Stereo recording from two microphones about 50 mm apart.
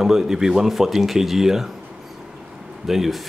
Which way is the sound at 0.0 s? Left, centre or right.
Centre.